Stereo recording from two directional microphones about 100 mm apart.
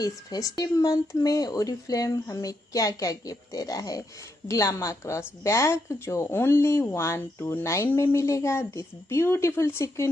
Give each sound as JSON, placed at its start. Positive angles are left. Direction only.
{"t": 0.0, "sound": "speech", "side_deg": 40}